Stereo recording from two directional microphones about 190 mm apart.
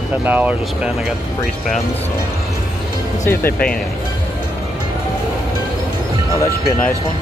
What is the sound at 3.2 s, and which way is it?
Speech, 10° left (ahead or behind).